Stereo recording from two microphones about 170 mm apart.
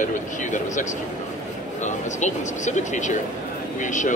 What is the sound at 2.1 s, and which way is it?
A man's voice, 45° left (ahead or behind).